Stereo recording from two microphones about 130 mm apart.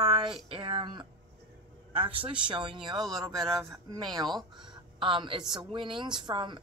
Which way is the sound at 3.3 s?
Centre (ahead or behind).